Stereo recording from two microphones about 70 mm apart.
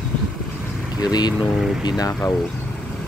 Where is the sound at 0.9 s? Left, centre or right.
Left.